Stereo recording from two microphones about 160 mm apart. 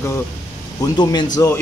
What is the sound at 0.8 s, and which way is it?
Speech, 25° left (ahead or behind).